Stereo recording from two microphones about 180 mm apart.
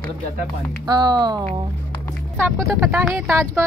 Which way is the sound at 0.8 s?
25° right (ahead or behind).